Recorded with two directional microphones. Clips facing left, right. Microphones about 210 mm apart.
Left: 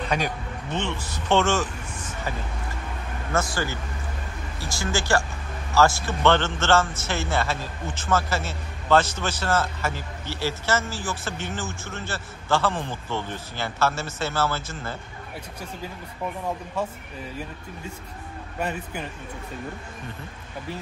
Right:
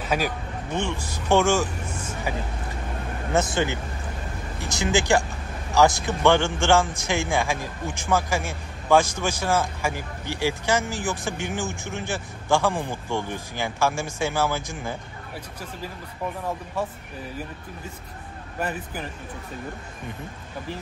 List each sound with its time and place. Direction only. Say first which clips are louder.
0.0 s speech: right 1 dB; 5° right (ahead or behind)
3.3 s a man's voice: right 3 dB; 20° right (ahead or behind)
18.6 s speech: even; 5° right (ahead or behind)